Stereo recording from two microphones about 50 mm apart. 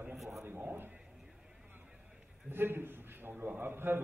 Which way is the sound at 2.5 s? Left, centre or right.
Right.